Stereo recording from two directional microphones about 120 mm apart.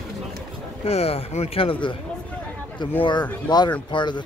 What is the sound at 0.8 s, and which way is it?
Speech, 55° left (ahead or behind).